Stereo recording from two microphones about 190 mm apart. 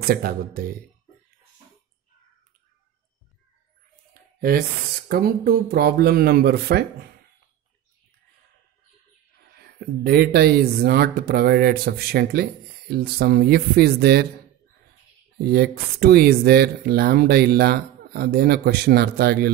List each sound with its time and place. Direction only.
0.1 s speech: 55° right (ahead or behind)
4.1 s speech: 50° right (ahead or behind)
9.5 s speech: 55° right (ahead or behind)
15.4 s speech: 55° right (ahead or behind)